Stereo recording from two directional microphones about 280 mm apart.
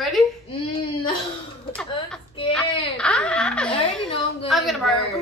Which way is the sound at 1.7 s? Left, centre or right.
Centre.